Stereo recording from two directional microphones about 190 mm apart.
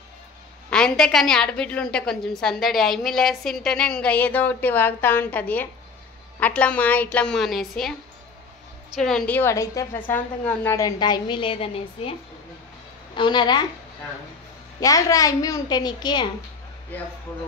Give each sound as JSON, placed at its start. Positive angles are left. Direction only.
{"t": 0.7, "sound": "a woman's voice", "side_deg": 5}
{"t": 8.9, "sound": "a woman's voice", "side_deg": 0}
{"t": 14.8, "sound": "a woman's voice", "side_deg": 20}